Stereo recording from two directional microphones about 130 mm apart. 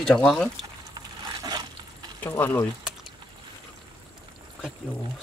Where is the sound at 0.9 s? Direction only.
35° right (ahead or behind).